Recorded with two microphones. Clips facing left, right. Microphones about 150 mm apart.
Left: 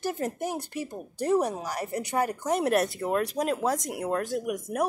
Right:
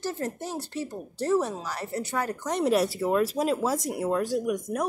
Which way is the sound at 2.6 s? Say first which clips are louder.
Right 5 dB; centre (ahead or behind).